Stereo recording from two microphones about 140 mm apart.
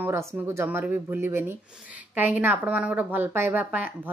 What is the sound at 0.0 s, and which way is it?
Speech, 20° right (ahead or behind).